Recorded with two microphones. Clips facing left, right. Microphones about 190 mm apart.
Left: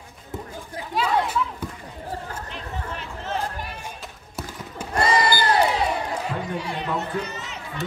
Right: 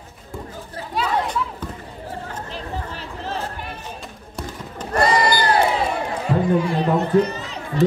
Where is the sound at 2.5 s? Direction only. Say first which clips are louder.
Right 4 dB; 35° right (ahead or behind).